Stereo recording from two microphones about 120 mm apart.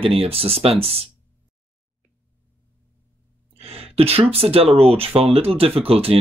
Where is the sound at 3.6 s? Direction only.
55° right (ahead or behind).